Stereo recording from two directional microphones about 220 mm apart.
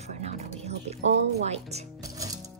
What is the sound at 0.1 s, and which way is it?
Music, 30° right (ahead or behind).